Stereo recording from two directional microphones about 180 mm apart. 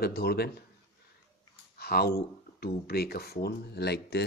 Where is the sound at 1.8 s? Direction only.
60° left (ahead or behind).